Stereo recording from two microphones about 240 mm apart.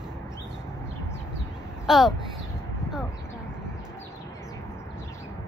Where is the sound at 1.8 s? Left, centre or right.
Centre.